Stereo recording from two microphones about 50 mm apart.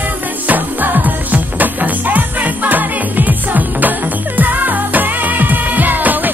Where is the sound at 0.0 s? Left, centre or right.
Right.